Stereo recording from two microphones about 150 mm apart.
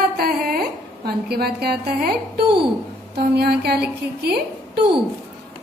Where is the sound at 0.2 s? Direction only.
90° right.